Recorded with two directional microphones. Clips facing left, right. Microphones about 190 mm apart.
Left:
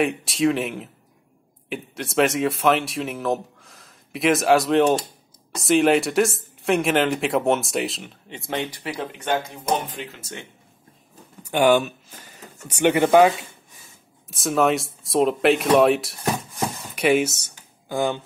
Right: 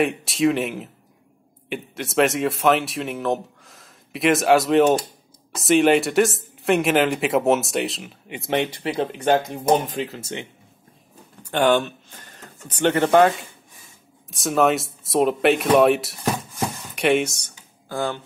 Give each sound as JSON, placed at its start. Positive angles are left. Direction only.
{"t": 0.0, "sound": "speech", "side_deg": 0}
{"t": 8.3, "sound": "speech", "side_deg": -20}
{"t": 11.4, "sound": "speech", "side_deg": 10}
{"t": 14.3, "sound": "speech", "side_deg": 0}
{"t": 17.8, "sound": "speech", "side_deg": 15}